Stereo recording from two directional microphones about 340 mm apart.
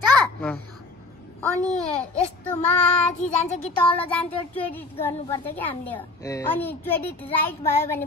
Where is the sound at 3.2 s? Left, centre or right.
Centre.